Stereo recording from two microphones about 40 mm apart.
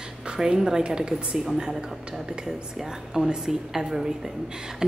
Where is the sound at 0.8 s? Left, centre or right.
Right.